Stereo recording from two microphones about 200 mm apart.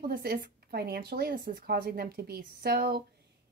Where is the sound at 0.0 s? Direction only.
50° right (ahead or behind).